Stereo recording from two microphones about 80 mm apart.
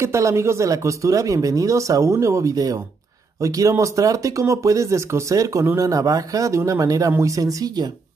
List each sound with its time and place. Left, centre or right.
0.0 s speech: right